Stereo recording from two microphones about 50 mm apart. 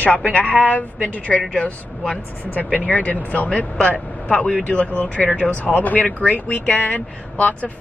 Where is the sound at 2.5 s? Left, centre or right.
Left.